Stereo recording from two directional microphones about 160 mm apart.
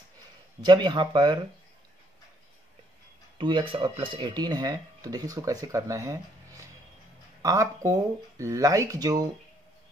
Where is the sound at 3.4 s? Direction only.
30° right (ahead or behind).